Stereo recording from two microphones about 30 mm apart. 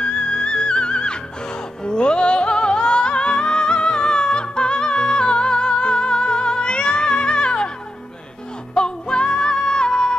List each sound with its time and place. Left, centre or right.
0.0 s music: left
8.7 s music: left